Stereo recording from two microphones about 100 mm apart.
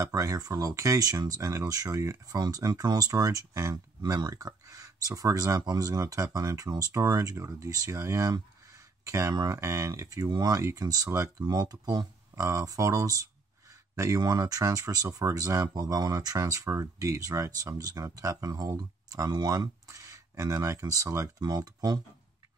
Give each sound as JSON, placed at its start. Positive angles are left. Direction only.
{"t": 0.0, "sound": "speech", "side_deg": -35}